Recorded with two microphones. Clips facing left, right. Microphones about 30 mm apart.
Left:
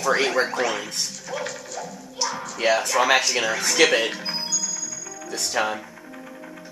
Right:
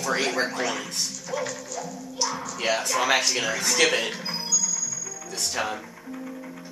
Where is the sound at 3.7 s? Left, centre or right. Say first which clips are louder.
Left 4 dB; left.